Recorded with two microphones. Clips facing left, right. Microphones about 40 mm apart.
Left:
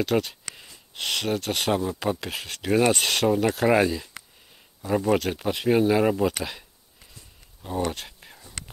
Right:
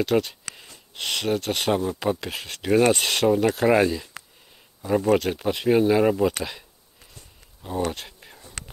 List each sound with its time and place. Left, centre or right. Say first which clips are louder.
0.0 s speech: right 2 dB; centre
7.6 s speech: right 1 dB; centre